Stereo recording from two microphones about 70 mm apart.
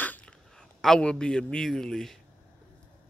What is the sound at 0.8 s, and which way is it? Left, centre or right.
Speech, centre.